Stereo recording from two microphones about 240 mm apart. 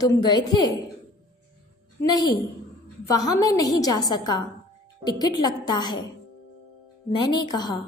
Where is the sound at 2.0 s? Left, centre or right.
Centre.